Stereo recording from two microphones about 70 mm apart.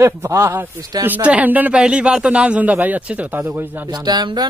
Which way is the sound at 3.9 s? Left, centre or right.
Right.